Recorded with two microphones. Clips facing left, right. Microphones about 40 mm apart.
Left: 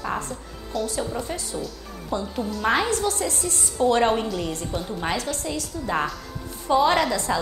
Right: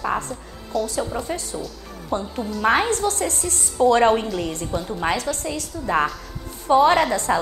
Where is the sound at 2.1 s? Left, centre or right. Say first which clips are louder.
Right 2 dB; right.